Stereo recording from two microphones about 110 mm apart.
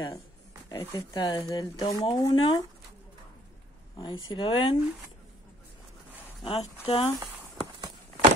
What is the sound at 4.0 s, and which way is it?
Speech, 50° left (ahead or behind).